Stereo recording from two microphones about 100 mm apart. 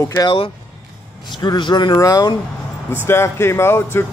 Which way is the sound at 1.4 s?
45° left (ahead or behind).